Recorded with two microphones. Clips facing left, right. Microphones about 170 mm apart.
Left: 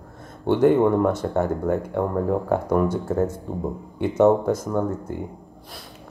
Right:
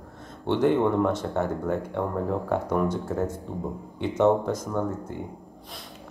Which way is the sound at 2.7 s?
10° left (ahead or behind).